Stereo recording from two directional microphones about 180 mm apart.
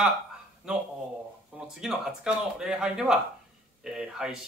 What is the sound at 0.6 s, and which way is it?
Speech, 5° right (ahead or behind).